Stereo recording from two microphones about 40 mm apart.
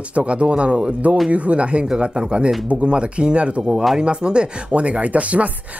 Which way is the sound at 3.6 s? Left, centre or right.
Centre.